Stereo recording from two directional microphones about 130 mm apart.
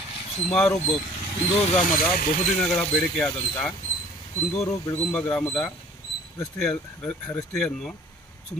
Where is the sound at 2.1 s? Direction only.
90° left.